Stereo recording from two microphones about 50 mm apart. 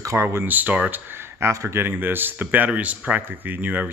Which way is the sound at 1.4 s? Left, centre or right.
Right.